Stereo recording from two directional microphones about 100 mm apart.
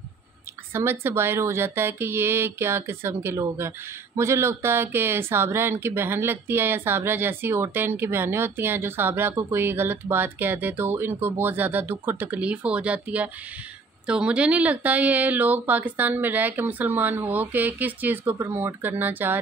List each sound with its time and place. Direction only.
0.7 s a woman's voice: 25° right (ahead or behind)